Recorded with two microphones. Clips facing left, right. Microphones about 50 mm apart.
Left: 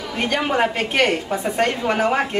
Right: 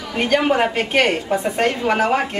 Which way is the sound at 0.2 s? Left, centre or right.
Centre.